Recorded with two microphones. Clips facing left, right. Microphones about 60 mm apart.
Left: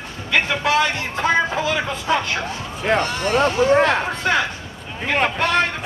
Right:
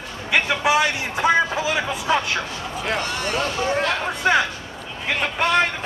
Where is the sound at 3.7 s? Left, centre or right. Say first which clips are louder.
Left 5 dB; left.